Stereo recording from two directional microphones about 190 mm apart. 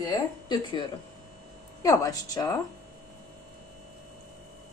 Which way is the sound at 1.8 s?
20° left (ahead or behind).